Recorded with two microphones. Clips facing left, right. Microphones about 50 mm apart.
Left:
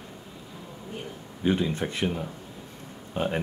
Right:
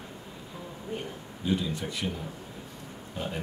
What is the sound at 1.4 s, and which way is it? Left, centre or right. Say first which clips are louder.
Speech: left 4 dB; left.